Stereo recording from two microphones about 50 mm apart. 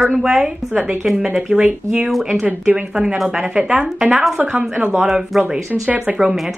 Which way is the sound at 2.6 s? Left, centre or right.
Centre.